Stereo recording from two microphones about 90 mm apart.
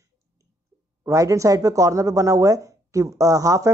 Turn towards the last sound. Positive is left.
turn(degrees=-40)  # may be behind; listen again after turning